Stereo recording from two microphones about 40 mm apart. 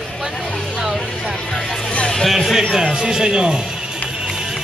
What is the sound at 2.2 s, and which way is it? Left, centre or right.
Speech, centre.